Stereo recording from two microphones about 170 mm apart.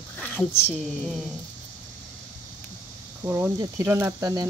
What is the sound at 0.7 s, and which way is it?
Speech, centre (ahead or behind).